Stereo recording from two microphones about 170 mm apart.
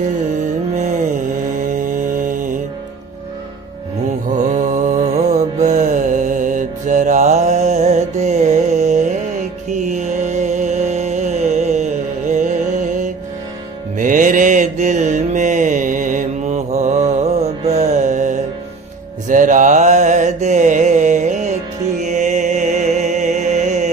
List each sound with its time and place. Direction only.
1.6 s music: 50° right (ahead or behind)
4.3 s mantra: 45° right (ahead or behind)
9.7 s music: 45° right (ahead or behind)
13.9 s mantra: 50° right (ahead or behind)
22.0 s music: 45° right (ahead or behind)